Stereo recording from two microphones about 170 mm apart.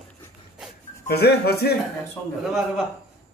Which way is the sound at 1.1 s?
70° left (ahead or behind).